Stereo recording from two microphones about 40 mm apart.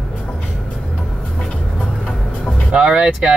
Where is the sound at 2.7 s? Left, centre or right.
Right.